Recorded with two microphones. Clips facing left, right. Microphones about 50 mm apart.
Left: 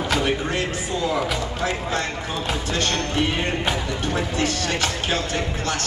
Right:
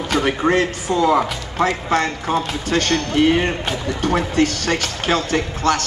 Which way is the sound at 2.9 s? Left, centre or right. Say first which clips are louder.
Right 5 dB; left.